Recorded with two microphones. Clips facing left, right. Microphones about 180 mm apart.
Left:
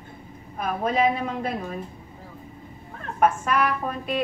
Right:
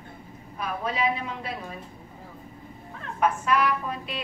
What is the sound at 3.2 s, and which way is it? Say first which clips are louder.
A woman's voice: left 2 dB; 50° left (ahead or behind).